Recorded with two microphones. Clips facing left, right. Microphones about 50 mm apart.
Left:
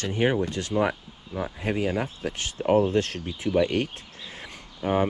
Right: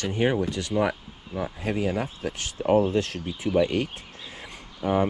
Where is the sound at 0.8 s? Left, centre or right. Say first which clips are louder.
Even; left.